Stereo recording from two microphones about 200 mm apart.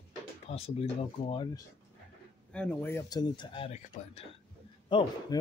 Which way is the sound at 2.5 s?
10° left (ahead or behind).